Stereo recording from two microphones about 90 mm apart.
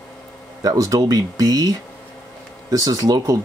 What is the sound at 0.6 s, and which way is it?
Speech, 40° right (ahead or behind).